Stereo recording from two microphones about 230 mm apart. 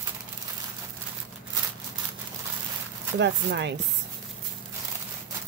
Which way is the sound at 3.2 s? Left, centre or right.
Right.